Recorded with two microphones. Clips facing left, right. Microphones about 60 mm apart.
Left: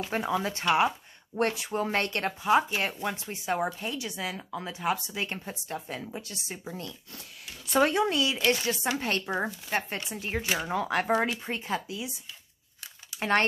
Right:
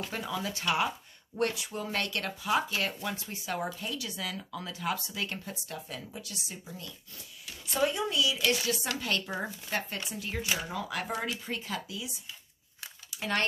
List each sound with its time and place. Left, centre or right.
0.1 s speech: left
8.5 s speech: left
11.4 s speech: left